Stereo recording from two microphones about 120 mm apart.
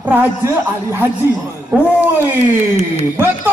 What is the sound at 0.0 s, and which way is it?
A man's voice, 15° right (ahead or behind).